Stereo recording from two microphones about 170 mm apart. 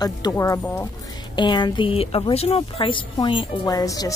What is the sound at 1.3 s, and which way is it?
Speech, 25° left (ahead or behind).